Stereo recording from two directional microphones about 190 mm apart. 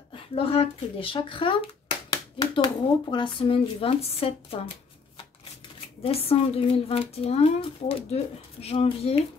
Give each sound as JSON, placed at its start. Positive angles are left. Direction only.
{"t": 0.1, "sound": "speech", "side_deg": 30}
{"t": 6.0, "sound": "speech", "side_deg": 30}